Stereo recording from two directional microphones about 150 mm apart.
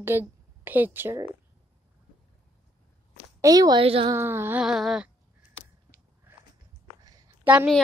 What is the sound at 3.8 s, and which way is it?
Speech, 40° right (ahead or behind).